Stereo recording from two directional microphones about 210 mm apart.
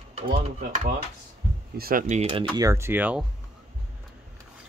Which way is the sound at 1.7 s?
45° right (ahead or behind).